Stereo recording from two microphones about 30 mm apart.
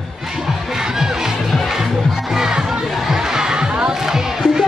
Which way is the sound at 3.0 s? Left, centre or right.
Centre.